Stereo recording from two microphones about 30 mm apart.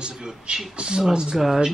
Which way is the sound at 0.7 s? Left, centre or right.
Right.